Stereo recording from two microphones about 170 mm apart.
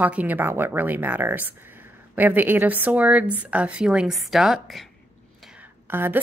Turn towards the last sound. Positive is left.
turn(degrees=-10)  # may be behind; listen again after turning